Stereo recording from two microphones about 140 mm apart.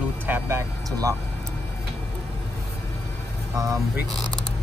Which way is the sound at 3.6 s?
25° right (ahead or behind).